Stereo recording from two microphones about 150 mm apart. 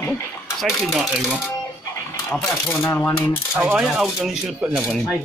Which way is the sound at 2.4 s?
20° left (ahead or behind).